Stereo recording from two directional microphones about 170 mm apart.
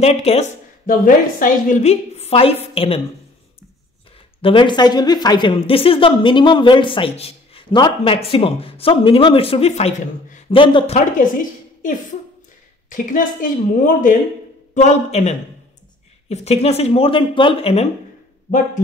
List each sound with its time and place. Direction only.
0.0 s speech: 35° left (ahead or behind)
0.8 s speech: 50° left (ahead or behind); by 3.0 s 35° left (ahead or behind)
4.4 s speech: 30° left (ahead or behind)
10.5 s speech: 30° left (ahead or behind)
11.8 s a woman's voice: 50° left (ahead or behind)